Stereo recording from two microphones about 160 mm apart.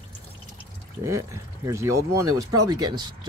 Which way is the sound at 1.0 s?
20° right (ahead or behind).